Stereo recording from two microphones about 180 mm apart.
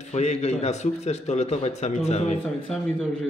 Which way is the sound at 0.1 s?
40° left (ahead or behind).